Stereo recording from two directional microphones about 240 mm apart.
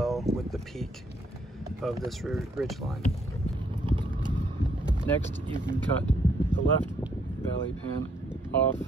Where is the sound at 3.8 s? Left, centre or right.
Centre.